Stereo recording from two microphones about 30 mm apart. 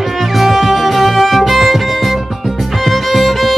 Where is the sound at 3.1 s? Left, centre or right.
Centre.